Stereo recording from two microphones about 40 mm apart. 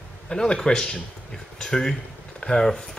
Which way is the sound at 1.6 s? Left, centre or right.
Centre.